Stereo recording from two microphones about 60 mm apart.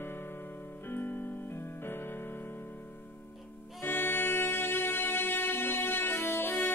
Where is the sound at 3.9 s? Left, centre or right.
Left.